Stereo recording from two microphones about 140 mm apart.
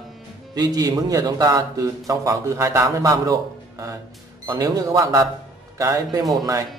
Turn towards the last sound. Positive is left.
turn(degrees=-25)  # may be behind; listen again after turning